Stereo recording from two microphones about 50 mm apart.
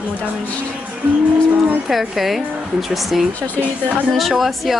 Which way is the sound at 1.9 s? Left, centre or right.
Centre.